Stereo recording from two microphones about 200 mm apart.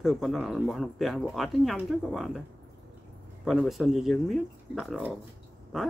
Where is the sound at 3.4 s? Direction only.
Centre (ahead or behind).